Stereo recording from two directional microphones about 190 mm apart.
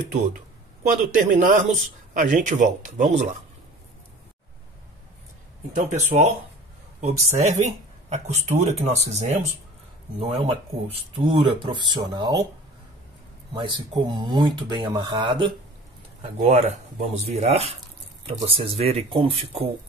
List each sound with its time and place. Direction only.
0.8 s speech: 45° right (ahead or behind)
5.8 s speech: 35° right (ahead or behind); by 12.4 s 20° right (ahead or behind)
13.5 s speech: 25° right (ahead or behind)